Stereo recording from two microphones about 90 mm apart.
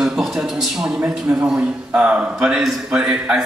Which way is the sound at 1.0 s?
15° right (ahead or behind).